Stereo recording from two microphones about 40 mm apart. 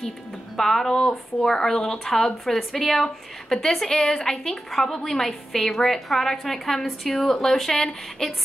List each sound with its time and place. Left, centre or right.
0.6 s speech: centre